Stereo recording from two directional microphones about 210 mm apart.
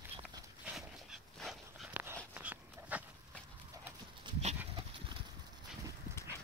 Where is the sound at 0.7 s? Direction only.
Centre (ahead or behind).